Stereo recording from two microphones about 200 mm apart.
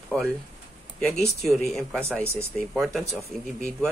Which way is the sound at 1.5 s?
Centre (ahead or behind).